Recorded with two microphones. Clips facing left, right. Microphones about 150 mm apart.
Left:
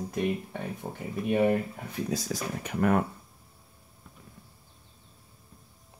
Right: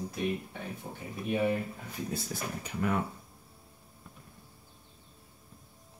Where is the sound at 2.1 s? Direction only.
90° left.